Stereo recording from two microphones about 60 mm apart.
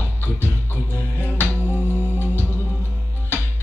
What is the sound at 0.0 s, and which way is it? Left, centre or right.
Music, left.